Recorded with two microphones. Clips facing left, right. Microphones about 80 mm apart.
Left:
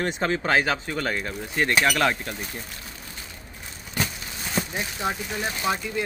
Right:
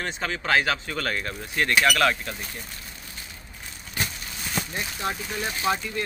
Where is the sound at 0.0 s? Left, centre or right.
Left.